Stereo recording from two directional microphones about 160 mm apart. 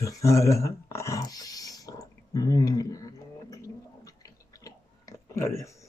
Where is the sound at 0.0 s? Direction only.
20° left (ahead or behind).